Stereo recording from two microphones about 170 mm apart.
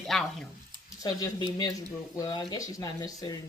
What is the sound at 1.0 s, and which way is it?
Speech, 20° left (ahead or behind).